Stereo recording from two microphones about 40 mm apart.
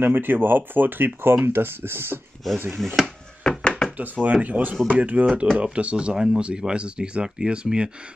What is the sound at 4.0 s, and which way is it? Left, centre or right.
Speech, right.